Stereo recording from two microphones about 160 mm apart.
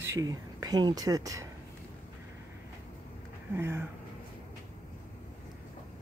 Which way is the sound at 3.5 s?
15° right (ahead or behind).